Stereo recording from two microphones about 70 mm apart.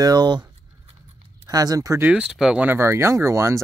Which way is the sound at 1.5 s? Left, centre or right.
Right.